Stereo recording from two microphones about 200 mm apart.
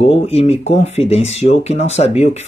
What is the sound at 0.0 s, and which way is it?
Speech, 30° left (ahead or behind).